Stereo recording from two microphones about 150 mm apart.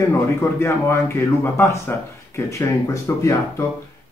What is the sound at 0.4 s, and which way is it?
Speech, 20° left (ahead or behind).